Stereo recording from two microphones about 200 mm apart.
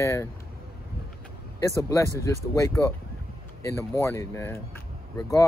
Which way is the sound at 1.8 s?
15° left (ahead or behind).